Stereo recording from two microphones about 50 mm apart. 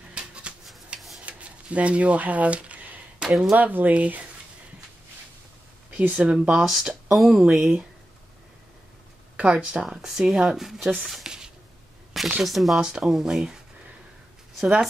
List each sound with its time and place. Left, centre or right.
0.1 s a sound: centre
0.9 s a sound: centre
1.2 s a sound: right
3.2 s speech: centre
3.5 s speech: right
5.9 s speech: right
6.6 s speech: centre
9.4 s speech: right
9.8 s speech: centre
11.2 s writing: centre
12.1 s a sound: centre
12.4 s speech: centre
12.7 s speech: centre
14.6 s speech: centre